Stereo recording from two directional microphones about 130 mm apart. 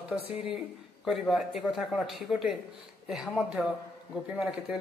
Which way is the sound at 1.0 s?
Centre (ahead or behind).